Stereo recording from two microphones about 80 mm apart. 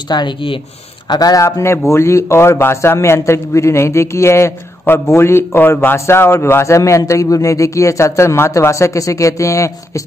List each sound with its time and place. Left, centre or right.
0.1 s speech: left
1.0 s a man's voice: left
1.4 s a man's voice: left